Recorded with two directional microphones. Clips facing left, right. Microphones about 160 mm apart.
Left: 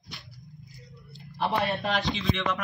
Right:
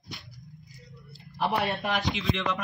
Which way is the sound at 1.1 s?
5° right (ahead or behind).